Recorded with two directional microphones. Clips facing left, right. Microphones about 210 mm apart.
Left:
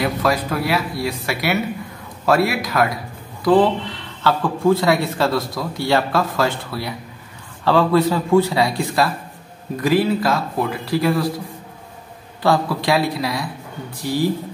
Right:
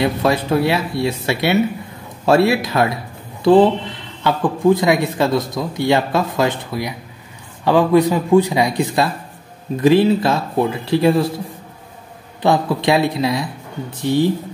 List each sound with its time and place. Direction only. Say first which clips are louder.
0.0 s a man's voice: right 3 dB; 25° right (ahead or behind)
12.4 s speech: right 2 dB; 20° right (ahead or behind)